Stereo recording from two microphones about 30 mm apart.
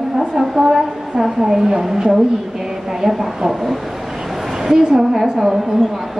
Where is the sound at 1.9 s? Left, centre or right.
Centre.